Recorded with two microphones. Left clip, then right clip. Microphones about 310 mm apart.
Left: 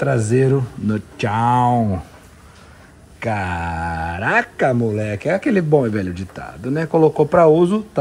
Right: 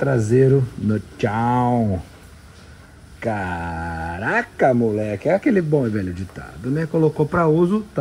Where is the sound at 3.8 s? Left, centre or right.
Left.